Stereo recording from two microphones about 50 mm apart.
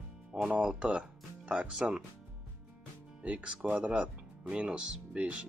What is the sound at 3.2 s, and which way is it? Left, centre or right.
Speech, right.